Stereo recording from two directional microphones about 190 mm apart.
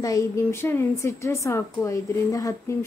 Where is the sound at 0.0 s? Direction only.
15° left (ahead or behind).